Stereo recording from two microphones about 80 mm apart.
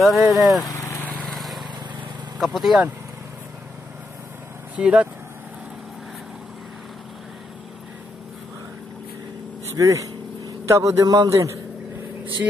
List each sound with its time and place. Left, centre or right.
0.0 s speech: centre
1.2 s vehicle: centre
2.3 s speech: centre
4.7 s speech: centre
9.8 s a man's voice: right